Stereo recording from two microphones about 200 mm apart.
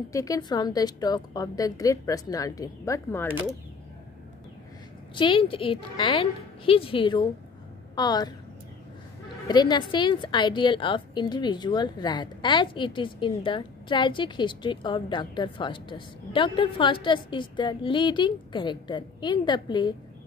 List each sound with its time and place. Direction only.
0.1 s a woman's voice: 15° left (ahead or behind)
5.1 s a woman's voice: 25° left (ahead or behind)
9.5 s a woman's voice: 20° left (ahead or behind)